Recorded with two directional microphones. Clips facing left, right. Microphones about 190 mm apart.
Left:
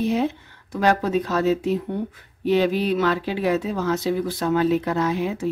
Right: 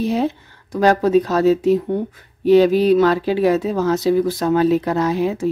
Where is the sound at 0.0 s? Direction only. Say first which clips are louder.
Right 3 dB; 35° right (ahead or behind).